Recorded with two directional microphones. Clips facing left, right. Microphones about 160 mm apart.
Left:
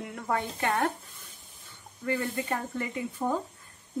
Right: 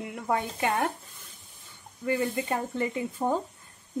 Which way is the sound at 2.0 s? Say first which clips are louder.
Right 3 dB; 15° right (ahead or behind).